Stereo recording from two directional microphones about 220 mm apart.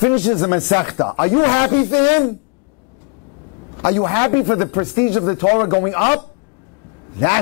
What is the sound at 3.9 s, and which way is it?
Speech, 15° left (ahead or behind).